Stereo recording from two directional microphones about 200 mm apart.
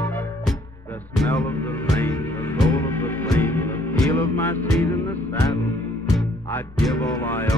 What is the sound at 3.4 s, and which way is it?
Music, 10° left (ahead or behind).